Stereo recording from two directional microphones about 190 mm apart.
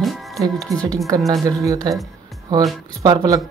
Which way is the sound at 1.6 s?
20° right (ahead or behind).